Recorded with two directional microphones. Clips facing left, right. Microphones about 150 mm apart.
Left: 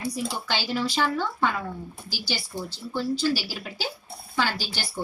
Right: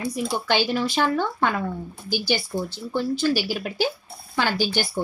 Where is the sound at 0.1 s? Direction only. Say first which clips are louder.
Right 6 dB; 55° right (ahead or behind).